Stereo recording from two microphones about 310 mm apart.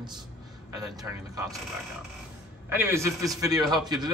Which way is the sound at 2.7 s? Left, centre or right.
Centre.